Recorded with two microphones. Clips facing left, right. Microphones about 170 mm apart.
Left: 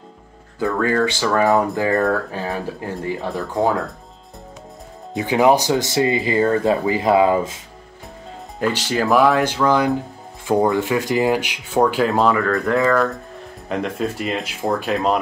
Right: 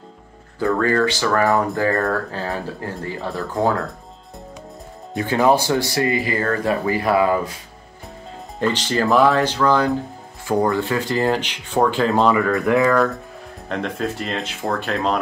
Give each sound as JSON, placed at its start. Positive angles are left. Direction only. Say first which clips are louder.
{"t": 0.6, "sound": "speech", "louder": "right 1 dB", "side_deg": 10}
{"t": 1.9, "sound": "speech", "louder": "left 4 dB", "side_deg": 0}
{"t": 2.3, "sound": "speech", "louder": "left 1 dB", "side_deg": 15}
{"t": 5.1, "sound": "speech", "louder": "left 2 dB", "side_deg": 15}
{"t": 8.5, "sound": "speech", "louder": "even", "side_deg": 10}